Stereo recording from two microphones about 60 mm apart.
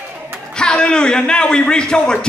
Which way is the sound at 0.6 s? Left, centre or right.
Centre.